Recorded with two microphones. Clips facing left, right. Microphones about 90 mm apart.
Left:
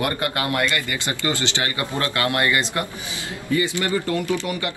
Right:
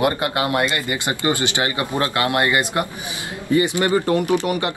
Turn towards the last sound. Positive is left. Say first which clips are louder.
# right 5 dB
turn(degrees=-20)  # may be behind; listen again after turning